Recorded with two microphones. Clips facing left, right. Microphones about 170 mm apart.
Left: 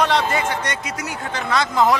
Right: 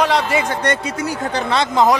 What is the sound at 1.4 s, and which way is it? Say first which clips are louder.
Speech: right 2 dB; 25° right (ahead or behind).